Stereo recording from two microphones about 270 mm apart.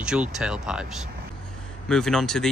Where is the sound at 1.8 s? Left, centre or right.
Centre.